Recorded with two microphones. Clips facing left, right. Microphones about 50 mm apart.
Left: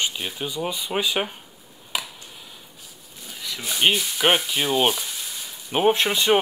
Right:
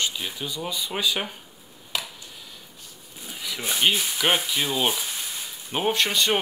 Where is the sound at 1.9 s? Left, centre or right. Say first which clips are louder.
Left 2 dB; centre.